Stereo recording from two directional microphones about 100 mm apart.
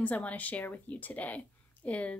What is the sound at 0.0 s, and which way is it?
Speech, 15° left (ahead or behind).